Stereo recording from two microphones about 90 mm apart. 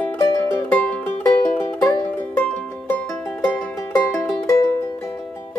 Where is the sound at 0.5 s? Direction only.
15° left (ahead or behind).